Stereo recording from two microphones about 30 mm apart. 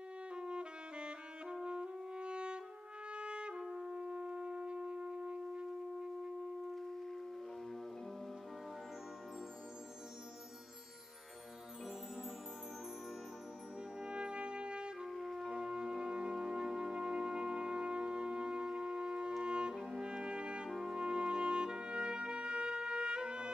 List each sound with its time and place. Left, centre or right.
0.3 s music: right
3.1 s trumpet: right
3.6 s music: centre
3.9 s shofar: right
13.9 s brass instrument: right
15.0 s music: centre
15.5 s wind instrument: right
16.0 s music: right
19.4 s brass instrument: right
19.9 s music: right
20.7 s brass instrument: centre
21.0 s brass instrument: right
21.6 s trumpet: right